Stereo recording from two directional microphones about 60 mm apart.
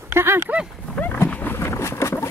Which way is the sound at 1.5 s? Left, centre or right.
Left.